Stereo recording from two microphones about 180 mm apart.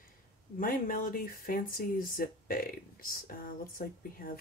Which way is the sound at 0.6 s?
50° left (ahead or behind).